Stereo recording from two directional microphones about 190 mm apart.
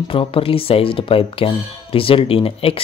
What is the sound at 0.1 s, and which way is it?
Speech, 30° left (ahead or behind).